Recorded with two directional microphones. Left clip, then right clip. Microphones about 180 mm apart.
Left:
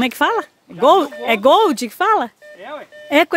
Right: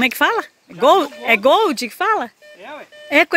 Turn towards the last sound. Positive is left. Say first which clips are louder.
# even
turn(degrees=15)  # may be behind; listen again after turning